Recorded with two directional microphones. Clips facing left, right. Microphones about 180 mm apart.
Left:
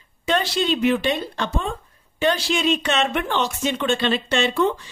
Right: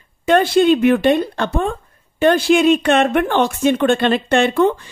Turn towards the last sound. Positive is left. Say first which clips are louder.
# right 6 dB
turn(degrees=-55)  # may be behind; listen again after turning